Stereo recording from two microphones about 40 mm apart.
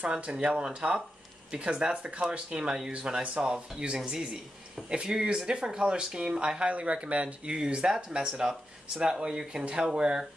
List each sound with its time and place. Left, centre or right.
0.2 s speech: right
7.5 s speech: right